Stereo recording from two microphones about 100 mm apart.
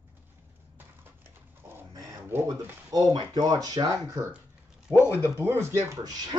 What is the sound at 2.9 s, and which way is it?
Speech, 40° right (ahead or behind).